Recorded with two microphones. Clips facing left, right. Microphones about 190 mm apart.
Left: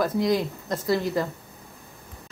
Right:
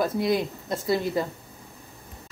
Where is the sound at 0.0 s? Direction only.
25° right (ahead or behind).